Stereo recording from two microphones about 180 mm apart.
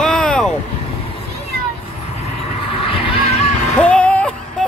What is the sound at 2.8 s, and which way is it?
Vehicle, 30° left (ahead or behind).